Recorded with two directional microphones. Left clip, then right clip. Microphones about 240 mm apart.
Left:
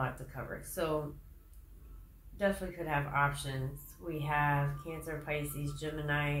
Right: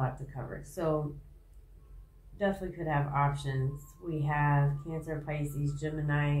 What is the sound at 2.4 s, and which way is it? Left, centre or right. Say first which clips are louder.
Speech: right 1 dB; left.